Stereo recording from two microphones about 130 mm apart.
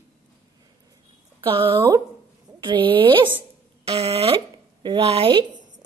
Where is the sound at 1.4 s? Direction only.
40° right (ahead or behind).